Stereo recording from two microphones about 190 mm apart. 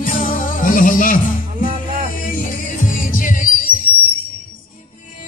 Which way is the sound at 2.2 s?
45° left (ahead or behind).